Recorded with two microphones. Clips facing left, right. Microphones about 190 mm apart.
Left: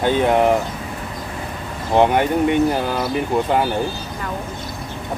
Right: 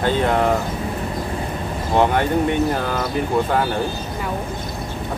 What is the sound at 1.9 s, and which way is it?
Speech, 15° left (ahead or behind).